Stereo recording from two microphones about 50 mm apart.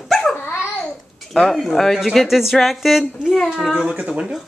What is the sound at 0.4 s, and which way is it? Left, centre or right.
Babbling, left.